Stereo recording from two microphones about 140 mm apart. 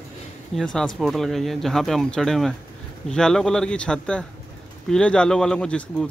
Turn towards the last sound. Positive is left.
turn(degrees=5)  # may be behind; listen again after turning